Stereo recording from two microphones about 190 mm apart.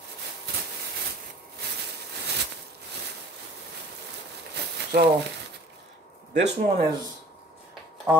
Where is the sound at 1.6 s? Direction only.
60° right (ahead or behind).